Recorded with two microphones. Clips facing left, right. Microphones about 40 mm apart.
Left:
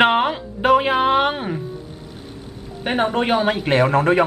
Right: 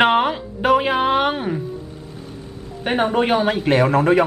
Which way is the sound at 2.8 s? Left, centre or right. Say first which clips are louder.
Right 1 dB; centre.